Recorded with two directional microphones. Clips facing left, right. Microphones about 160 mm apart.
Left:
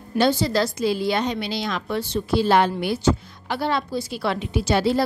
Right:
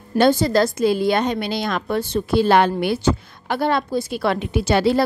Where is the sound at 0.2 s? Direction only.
50° right (ahead or behind).